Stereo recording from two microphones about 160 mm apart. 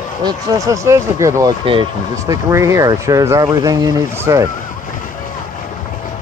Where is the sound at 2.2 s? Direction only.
20° right (ahead or behind).